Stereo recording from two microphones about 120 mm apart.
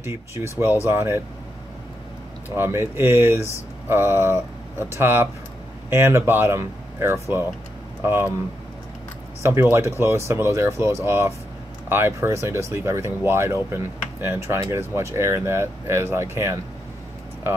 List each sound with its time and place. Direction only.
0.0 s speech: 20° right (ahead or behind)
2.5 s speech: 20° right (ahead or behind)
9.4 s speech: 20° right (ahead or behind)